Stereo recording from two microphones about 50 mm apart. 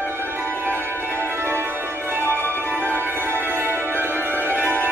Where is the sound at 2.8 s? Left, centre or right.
Right.